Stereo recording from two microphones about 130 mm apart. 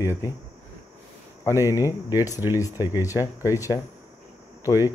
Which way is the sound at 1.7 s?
30° left (ahead or behind).